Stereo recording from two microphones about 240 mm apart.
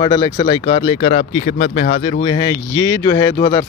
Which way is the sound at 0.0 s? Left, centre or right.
Centre.